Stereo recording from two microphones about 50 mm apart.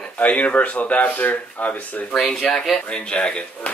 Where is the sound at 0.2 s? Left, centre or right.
Left.